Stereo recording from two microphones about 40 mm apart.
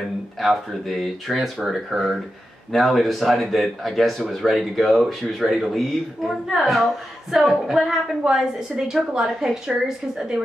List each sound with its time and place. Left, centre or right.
0.4 s a woman's voice: centre